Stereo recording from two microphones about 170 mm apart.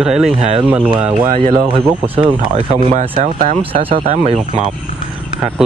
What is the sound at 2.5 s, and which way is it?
Speech, 35° right (ahead or behind).